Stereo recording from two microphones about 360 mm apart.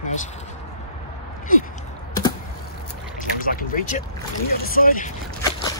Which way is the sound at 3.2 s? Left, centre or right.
Left.